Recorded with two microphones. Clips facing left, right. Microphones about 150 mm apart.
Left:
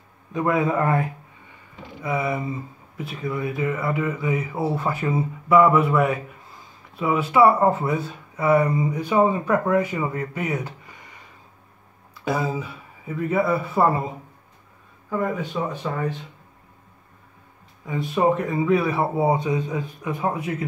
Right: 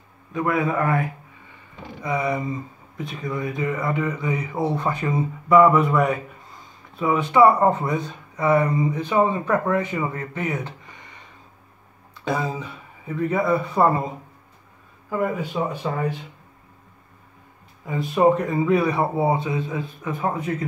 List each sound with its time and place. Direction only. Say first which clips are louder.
0.3 s a man's voice: left 1 dB; 20° left (ahead or behind)
2.0 s speech: right 1 dB; 5° left (ahead or behind)
12.3 s speech: left 1 dB; 5° left (ahead or behind)
15.0 s speech: right 1 dB; 5° right (ahead or behind)
17.8 s speech: right 2 dB; centre (ahead or behind)
19.1 s speech: left 1 dB; 15° left (ahead or behind)